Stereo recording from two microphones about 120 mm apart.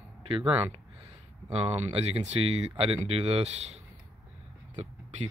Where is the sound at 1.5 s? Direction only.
60° right (ahead or behind).